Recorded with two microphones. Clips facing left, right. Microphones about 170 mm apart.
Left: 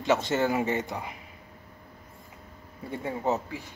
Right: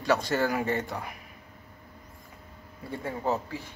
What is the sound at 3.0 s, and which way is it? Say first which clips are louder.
Speech: left 1 dB; 20° left (ahead or behind).